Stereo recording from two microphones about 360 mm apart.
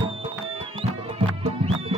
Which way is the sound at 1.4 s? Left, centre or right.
Centre.